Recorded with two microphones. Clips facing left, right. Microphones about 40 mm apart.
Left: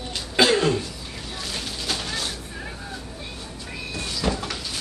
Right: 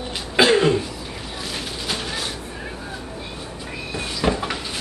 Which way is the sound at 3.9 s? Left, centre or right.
Right.